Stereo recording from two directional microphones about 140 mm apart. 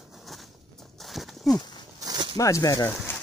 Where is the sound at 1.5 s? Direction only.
30° left (ahead or behind).